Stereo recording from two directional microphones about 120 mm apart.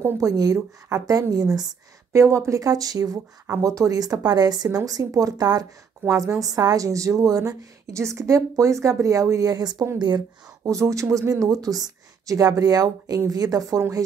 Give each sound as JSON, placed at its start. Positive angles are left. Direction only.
{"t": 0.0, "sound": "speech", "side_deg": -30}